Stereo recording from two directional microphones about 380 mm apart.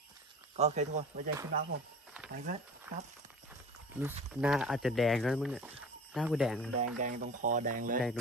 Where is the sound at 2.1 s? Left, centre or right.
Centre.